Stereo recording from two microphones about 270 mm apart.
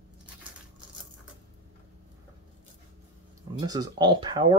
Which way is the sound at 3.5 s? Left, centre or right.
Centre.